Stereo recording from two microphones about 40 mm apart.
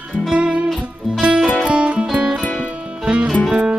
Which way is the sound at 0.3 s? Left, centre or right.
Right.